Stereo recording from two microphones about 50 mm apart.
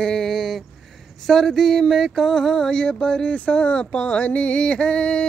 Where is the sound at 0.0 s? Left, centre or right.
Centre.